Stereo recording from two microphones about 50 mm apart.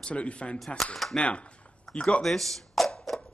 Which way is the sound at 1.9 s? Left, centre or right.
Left.